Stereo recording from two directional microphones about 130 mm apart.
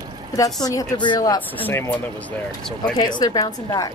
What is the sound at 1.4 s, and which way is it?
Speech, 15° left (ahead or behind).